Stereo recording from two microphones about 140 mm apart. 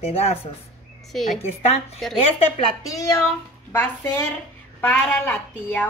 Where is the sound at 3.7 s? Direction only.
15° left (ahead or behind).